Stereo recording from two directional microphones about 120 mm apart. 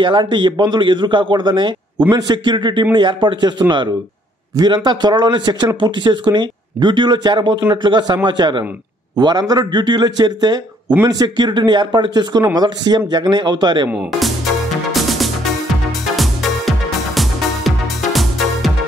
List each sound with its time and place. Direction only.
0.0 s a man's voice: 40° right (ahead or behind)
13.8 s speech: 5° right (ahead or behind)
14.9 s music: centre (ahead or behind)